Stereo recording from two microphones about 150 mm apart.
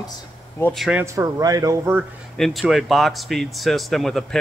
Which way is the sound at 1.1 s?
25° right (ahead or behind).